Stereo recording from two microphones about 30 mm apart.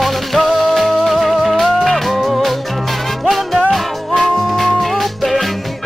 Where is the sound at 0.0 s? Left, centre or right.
Centre.